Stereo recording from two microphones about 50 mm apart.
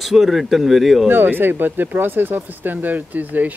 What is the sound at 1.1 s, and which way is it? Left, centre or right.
Speech, right.